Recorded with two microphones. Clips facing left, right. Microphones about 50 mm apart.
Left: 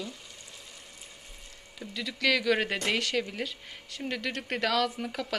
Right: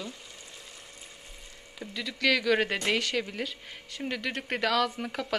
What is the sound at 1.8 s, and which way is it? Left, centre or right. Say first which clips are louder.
Speech: right 1 dB; centre.